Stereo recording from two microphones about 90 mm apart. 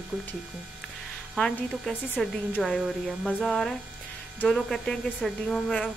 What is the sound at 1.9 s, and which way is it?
Speech, 15° left (ahead or behind).